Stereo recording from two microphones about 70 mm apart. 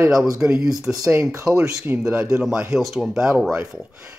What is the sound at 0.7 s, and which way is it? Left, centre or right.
Speech, right.